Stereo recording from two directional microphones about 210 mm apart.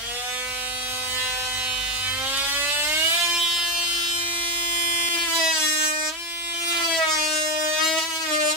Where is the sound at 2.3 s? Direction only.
5° right (ahead or behind).